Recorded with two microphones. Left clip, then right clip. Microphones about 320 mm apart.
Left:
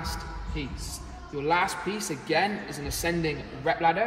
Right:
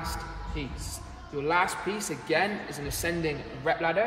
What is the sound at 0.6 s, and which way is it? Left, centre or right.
A man's voice, centre.